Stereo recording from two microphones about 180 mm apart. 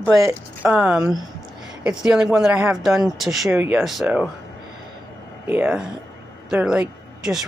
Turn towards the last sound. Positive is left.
turn(degrees=-5)  # may be behind; listen again after turning